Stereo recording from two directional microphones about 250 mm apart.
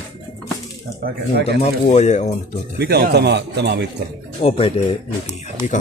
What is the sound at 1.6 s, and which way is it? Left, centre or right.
Speech, left.